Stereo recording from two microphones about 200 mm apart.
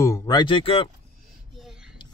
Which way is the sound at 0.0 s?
20° left (ahead or behind).